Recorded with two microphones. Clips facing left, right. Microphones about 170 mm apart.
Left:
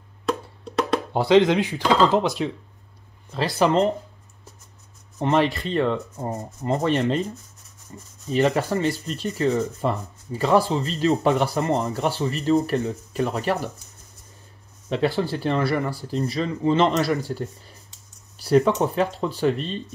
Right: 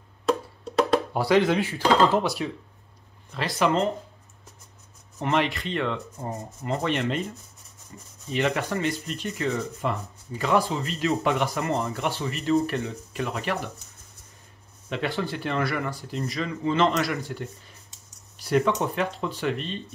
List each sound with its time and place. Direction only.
0.3 s wood block: centre (ahead or behind)
1.1 s speech: 20° left (ahead or behind)
3.5 s speech: 35° left (ahead or behind)
5.2 s speech: 35° left (ahead or behind)
14.9 s speech: 35° left (ahead or behind)